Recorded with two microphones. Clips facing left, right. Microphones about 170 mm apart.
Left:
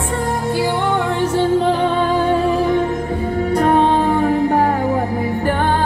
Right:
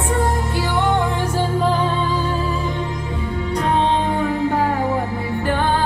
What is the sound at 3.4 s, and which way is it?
Music, 50° left (ahead or behind).